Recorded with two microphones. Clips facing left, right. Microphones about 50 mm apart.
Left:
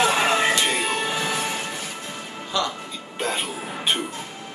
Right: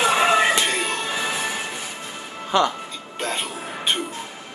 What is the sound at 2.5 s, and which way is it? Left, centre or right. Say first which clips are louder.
Speech: right 6 dB; right.